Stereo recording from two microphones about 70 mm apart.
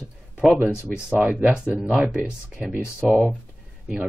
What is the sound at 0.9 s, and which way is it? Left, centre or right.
Speech, centre.